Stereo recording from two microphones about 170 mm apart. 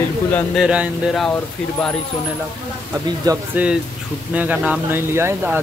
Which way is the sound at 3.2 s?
20° right (ahead or behind).